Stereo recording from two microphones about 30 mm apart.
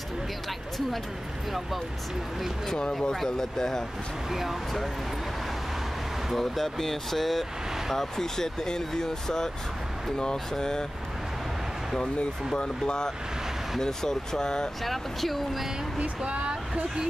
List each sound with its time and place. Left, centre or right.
2.9 s speech: left
4.3 s speech: centre
6.3 s speech: centre
12.5 s speech: left
13.7 s speech: centre
14.8 s speech: centre